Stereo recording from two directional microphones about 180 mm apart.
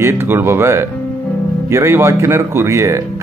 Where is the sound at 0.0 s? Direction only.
15° right (ahead or behind).